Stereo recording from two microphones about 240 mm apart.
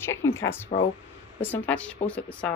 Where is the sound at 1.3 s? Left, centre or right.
Centre.